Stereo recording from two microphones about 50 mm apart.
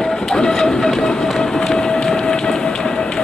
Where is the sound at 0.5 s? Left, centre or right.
Centre.